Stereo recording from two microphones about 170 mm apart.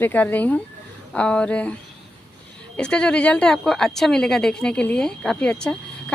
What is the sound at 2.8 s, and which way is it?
A woman's voice, 5° left (ahead or behind).